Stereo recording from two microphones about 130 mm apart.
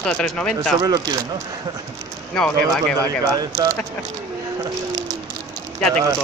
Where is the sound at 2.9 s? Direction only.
25° right (ahead or behind).